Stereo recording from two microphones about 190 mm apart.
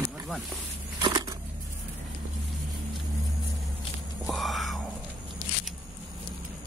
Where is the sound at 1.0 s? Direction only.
20° right (ahead or behind).